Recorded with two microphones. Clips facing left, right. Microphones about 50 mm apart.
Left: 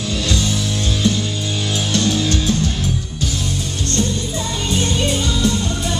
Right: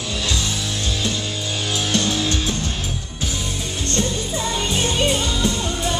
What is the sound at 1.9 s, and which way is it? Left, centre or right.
Music, centre.